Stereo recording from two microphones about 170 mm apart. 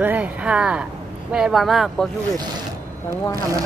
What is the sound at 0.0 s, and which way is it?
Speech, 10° right (ahead or behind).